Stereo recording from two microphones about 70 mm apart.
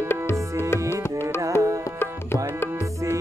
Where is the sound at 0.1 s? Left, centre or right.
Left.